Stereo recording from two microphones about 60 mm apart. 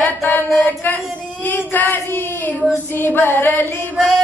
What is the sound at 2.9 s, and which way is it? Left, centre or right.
Female singing, left.